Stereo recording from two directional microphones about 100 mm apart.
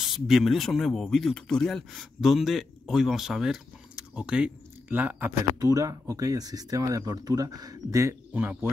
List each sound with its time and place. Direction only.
0.0 s speech: centre (ahead or behind); by 5.3 s 20° right (ahead or behind)
5.6 s speech: 35° right (ahead or behind)
8.3 s speech: 20° right (ahead or behind)